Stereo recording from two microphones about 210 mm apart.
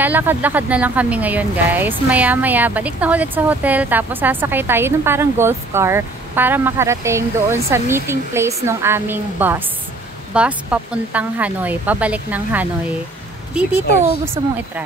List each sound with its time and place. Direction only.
0.0 s speech: 10° right (ahead or behind)
14.4 s speech: 20° right (ahead or behind)